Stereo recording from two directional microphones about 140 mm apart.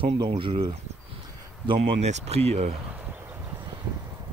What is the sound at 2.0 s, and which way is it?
Speech, 50° right (ahead or behind).